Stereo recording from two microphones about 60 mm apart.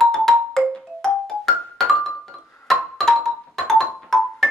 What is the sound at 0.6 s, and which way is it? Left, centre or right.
Music, centre.